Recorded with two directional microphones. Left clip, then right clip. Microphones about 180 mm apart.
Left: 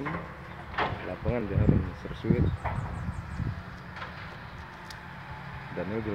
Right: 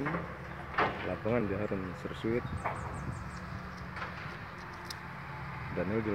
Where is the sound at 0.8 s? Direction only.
45° left (ahead or behind).